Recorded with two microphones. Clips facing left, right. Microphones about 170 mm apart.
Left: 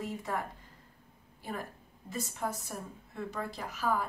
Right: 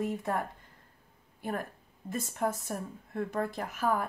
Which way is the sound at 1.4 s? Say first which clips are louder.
Right 4 dB; 55° right (ahead or behind).